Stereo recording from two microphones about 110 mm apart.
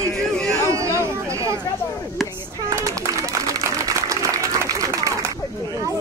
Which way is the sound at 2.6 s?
30° right (ahead or behind).